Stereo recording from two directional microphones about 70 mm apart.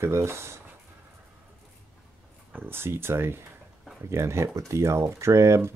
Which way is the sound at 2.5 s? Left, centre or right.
Right.